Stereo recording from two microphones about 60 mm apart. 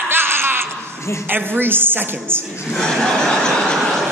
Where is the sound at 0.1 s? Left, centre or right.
Right.